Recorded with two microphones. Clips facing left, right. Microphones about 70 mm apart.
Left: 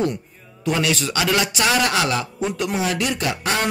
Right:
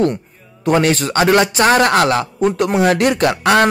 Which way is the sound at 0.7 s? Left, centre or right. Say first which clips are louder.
Right 7 dB; right.